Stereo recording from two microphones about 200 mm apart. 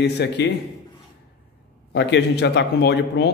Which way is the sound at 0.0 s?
60° left (ahead or behind).